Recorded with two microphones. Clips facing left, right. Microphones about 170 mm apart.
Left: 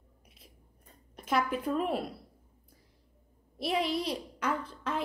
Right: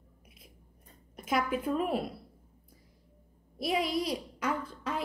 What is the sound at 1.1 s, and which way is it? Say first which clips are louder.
Speech: even; 5° right (ahead or behind).